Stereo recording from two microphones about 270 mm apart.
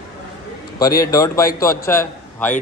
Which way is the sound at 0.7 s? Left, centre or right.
Centre.